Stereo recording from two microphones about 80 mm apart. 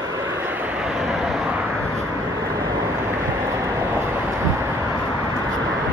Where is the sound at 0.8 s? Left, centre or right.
Centre.